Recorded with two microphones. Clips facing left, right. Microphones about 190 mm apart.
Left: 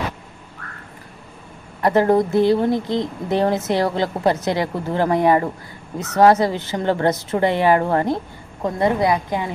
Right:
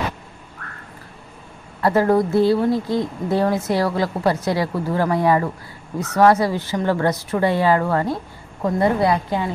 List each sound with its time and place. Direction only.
1.8 s a woman's voice: 20° left (ahead or behind)